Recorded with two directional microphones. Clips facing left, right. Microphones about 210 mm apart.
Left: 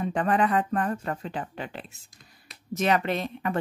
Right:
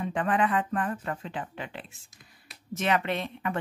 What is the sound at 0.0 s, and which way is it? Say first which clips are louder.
A woman's voice: left 2 dB; 40° left (ahead or behind).